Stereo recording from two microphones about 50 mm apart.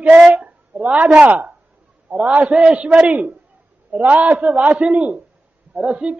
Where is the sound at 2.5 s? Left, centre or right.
Centre; by 4.4 s right.